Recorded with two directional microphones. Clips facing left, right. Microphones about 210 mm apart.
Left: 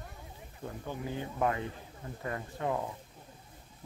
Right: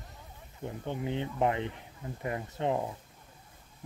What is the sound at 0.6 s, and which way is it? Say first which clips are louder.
Speech: right 4 dB; 20° right (ahead or behind).